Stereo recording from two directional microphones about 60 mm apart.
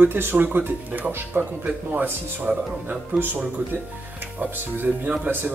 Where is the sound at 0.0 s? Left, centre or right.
Right.